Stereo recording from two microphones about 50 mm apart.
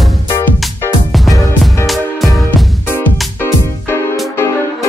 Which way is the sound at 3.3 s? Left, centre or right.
Left.